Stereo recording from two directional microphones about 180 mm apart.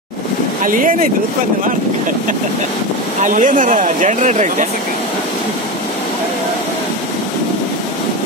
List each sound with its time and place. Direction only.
0.7 s speech: 50° right (ahead or behind)
3.2 s speech: 45° right (ahead or behind)